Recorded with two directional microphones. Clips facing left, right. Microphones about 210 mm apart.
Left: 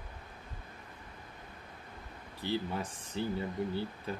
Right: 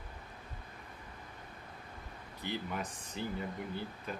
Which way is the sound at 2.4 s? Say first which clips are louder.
Left 4 dB; 30° left (ahead or behind).